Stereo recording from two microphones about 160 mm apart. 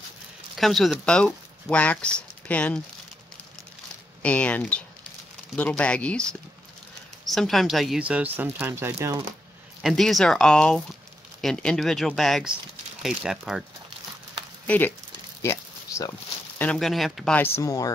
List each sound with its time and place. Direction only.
0.6 s speech: centre (ahead or behind)
4.2 s speech: 10° left (ahead or behind); by 9.2 s 15° right (ahead or behind)
9.8 s speech: centre (ahead or behind)
14.7 s speech: 10° left (ahead or behind)
15.4 s a sound: 20° left (ahead or behind)
16.6 s speech: centre (ahead or behind); by 17.9 s 20° left (ahead or behind)